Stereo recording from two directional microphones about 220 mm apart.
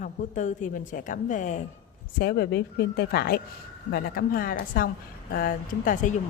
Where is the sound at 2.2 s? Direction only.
45° left (ahead or behind).